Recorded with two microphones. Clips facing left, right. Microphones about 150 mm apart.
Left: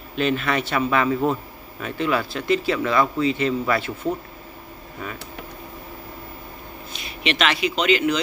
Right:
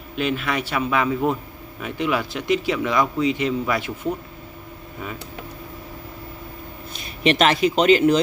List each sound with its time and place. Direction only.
0.1 s a man's voice: 10° right (ahead or behind)
7.0 s speech: 45° right (ahead or behind)